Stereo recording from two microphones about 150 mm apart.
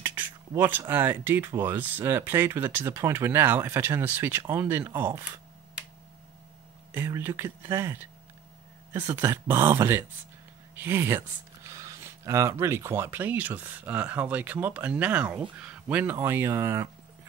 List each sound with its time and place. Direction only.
0.0 s a sound: 15° right (ahead or behind)
0.6 s speech: 15° right (ahead or behind)
6.9 s speech: 15° right (ahead or behind)
9.1 s speech: 15° right (ahead or behind)